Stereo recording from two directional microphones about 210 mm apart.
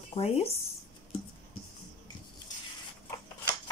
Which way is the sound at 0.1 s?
30° left (ahead or behind).